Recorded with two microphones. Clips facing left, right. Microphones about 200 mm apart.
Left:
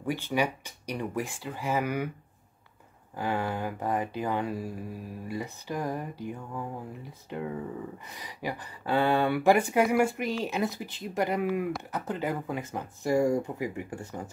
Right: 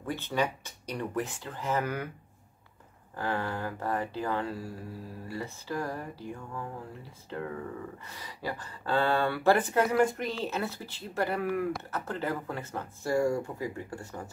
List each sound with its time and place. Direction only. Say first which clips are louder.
0.0 s speech: left 2 dB; 10° left (ahead or behind)
3.2 s speech: left 2 dB; 15° left (ahead or behind)